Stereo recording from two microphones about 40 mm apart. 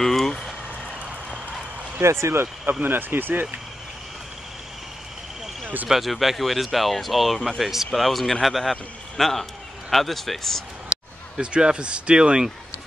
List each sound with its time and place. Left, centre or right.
0.0 s vehicle: centre
2.0 s speech: right
2.8 s speech: right
5.9 s a man's voice: centre
11.3 s speech: right